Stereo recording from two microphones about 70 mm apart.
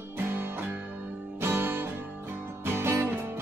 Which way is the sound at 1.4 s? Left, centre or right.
Right.